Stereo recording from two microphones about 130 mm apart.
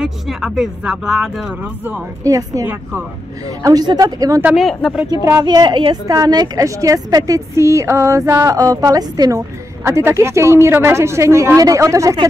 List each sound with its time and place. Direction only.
0.0 s speech: 5° right (ahead or behind)
1.6 s speech: 15° right (ahead or behind)
2.2 s a woman's voice: 25° right (ahead or behind)
3.4 s a woman's voice: 30° right (ahead or behind)
4.6 s speech: centre (ahead or behind)
5.2 s a woman's voice: 25° right (ahead or behind)